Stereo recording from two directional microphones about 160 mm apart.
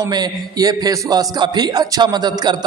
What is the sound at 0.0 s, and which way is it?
A man's voice, 25° right (ahead or behind).